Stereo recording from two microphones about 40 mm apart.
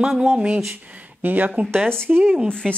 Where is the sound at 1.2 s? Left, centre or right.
Right.